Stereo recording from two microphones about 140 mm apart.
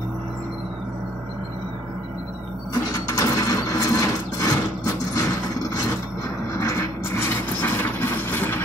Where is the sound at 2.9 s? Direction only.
25° left (ahead or behind).